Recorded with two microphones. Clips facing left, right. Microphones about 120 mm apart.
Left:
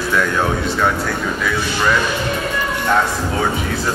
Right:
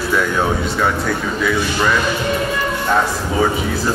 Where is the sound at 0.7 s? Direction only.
Centre (ahead or behind).